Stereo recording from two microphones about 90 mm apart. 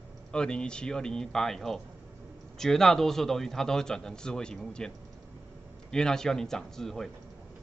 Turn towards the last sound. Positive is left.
turn(degrees=5)  # may be behind; listen again after turning